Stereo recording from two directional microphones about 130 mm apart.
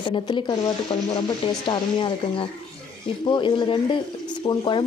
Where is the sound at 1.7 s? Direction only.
35° left (ahead or behind).